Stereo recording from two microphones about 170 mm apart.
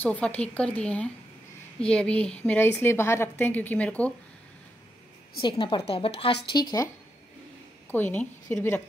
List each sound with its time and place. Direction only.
0.0 s a woman's voice: 10° left (ahead or behind)
5.4 s a woman's voice: 30° left (ahead or behind)
6.5 s speech: 20° left (ahead or behind)
7.9 s a woman's voice: 10° left (ahead or behind)